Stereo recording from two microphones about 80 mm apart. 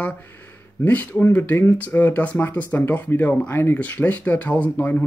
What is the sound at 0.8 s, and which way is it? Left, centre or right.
Speech, centre.